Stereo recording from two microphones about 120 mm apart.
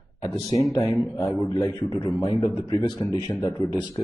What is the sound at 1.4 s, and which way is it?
Speech, 35° left (ahead or behind).